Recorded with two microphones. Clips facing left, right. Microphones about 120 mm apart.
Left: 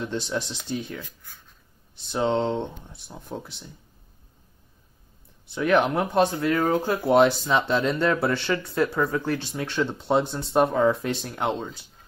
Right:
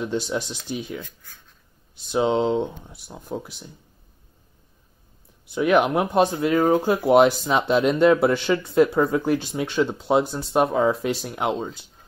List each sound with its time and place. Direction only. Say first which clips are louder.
0.0 s speech: right 3 dB; 15° right (ahead or behind)
2.0 s speech: right 3 dB; 15° right (ahead or behind)
5.5 s speech: right 2 dB; 10° right (ahead or behind)